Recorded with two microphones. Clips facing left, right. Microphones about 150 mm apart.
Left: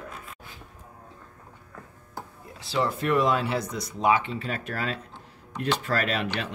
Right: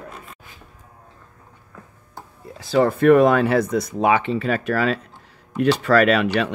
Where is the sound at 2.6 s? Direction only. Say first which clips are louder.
Right 9 dB; 50° right (ahead or behind); by 6.3 s 75° right (ahead or behind).